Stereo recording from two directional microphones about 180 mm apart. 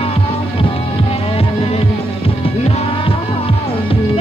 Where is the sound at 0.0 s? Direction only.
30° left (ahead or behind).